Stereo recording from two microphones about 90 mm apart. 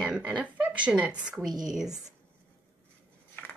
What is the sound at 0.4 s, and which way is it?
A woman's voice, 15° right (ahead or behind).